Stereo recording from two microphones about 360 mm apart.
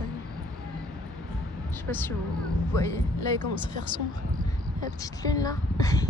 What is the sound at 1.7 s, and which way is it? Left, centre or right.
Speech, centre.